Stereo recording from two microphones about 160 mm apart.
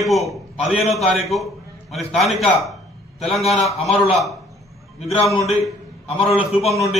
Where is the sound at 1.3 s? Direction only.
Centre (ahead or behind).